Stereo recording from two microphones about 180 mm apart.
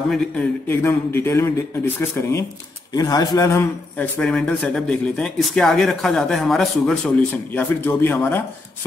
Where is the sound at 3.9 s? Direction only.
5° left (ahead or behind).